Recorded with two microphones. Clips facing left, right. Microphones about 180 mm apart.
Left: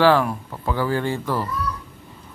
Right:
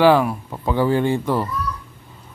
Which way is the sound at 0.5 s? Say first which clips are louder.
Right 4 dB; 20° right (ahead or behind).